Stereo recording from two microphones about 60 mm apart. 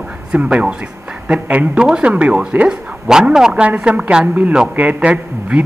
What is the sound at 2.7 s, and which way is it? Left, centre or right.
Speech, centre.